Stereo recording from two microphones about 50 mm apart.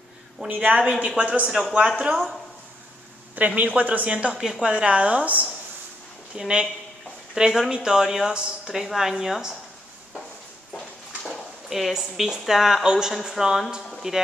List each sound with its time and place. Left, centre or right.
0.5 s a woman's voice: right
1.9 s speech: centre
3.3 s a woman's voice: right
4.4 s a woman's voice: centre; by 5.5 s right
6.3 s a woman's voice: centre
11.2 s a woman's voice: centre